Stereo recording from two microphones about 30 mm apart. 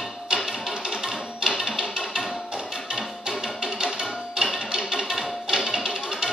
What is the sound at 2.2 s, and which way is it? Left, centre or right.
Music, centre.